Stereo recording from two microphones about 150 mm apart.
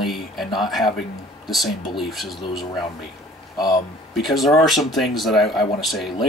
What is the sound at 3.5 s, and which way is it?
Speech, 25° left (ahead or behind).